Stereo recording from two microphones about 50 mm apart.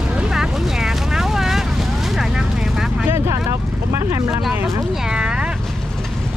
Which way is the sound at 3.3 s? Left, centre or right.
Right.